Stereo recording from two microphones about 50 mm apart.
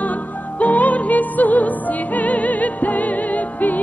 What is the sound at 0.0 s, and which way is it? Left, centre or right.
Music, left.